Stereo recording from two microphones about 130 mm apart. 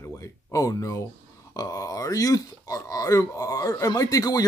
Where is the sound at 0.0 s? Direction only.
25° left (ahead or behind).